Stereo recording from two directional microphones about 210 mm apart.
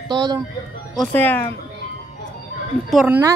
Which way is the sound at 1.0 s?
10° left (ahead or behind).